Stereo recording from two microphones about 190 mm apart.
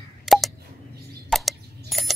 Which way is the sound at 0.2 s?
Centre (ahead or behind).